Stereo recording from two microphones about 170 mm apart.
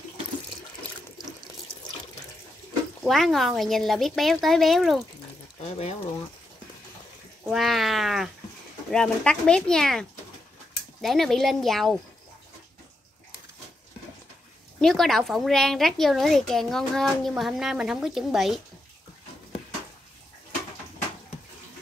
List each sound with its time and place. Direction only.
3.0 s a woman's voice: centre (ahead or behind)
5.7 s speech: 40° left (ahead or behind)
7.4 s a woman's voice: centre (ahead or behind)
14.8 s a woman's voice: centre (ahead or behind)